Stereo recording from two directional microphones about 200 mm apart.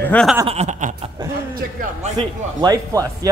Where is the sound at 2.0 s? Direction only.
25° right (ahead or behind).